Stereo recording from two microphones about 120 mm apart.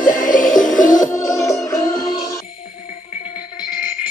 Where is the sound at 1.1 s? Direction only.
25° left (ahead or behind).